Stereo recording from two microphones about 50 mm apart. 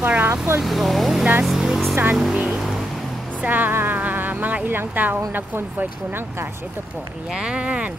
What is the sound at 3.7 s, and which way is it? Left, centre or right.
Music, right.